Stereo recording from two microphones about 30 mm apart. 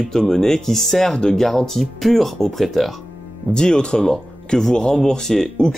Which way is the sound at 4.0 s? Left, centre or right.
Centre.